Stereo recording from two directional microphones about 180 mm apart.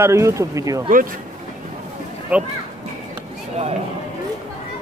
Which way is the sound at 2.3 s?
10° right (ahead or behind).